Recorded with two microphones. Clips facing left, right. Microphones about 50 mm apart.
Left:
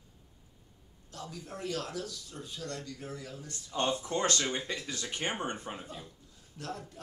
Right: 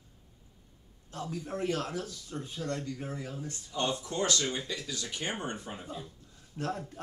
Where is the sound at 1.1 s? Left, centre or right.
Right.